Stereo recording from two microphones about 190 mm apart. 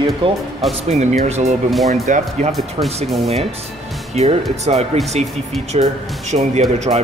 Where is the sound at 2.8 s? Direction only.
30° right (ahead or behind).